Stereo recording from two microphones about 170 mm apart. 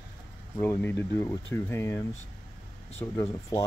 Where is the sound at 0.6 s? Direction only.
10° left (ahead or behind).